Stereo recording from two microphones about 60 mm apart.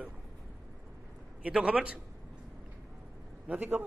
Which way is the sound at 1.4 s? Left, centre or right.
Centre.